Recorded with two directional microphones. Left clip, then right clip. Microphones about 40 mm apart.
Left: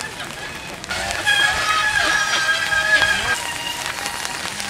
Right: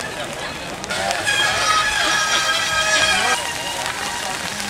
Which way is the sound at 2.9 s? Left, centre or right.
Centre.